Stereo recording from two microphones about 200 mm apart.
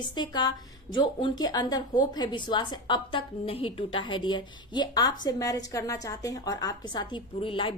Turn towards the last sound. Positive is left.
turn(degrees=25)  # may be behind; listen again after turning